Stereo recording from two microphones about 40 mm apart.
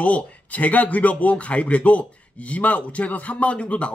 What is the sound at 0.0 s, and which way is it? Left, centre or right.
A man's voice, left.